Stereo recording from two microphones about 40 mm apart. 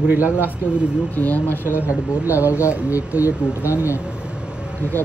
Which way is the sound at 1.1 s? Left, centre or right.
Left.